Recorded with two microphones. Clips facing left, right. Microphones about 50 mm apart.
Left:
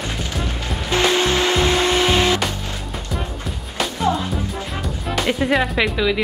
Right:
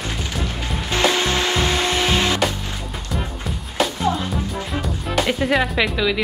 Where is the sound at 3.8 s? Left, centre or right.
Centre.